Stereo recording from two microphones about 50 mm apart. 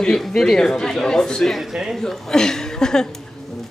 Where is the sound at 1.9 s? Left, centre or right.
Centre.